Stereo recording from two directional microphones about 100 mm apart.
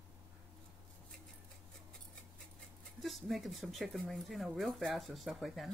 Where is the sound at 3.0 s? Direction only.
Centre (ahead or behind).